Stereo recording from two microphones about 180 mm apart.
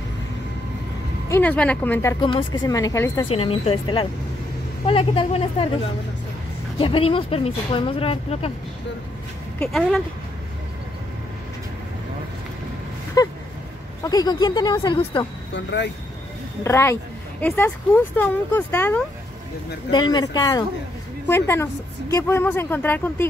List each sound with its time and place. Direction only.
1.3 s speech: 10° left (ahead or behind)
2.1 s speech: 25° left (ahead or behind)
3.3 s speech: 35° left (ahead or behind)
6.8 s speech: 30° left (ahead or behind)
9.7 s speech: 5° left (ahead or behind)
13.2 s a sound: 20° left (ahead or behind)
14.0 s speech: 20° left (ahead or behind)
15.5 s speech: 75° left (ahead or behind)
16.6 s speech: 15° left (ahead or behind)